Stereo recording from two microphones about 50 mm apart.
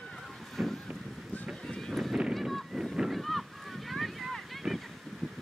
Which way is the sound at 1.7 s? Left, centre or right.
Centre.